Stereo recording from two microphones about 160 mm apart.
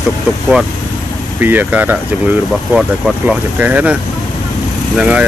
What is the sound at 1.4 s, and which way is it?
Speech, 10° right (ahead or behind).